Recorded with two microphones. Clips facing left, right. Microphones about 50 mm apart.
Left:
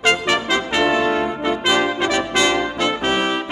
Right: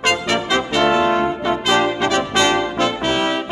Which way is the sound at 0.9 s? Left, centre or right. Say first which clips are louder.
Right 4 dB; right.